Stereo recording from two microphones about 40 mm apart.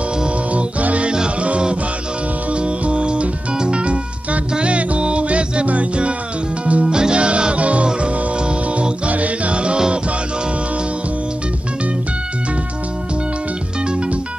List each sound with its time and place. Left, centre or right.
0.5 s music: right
13.8 s music: right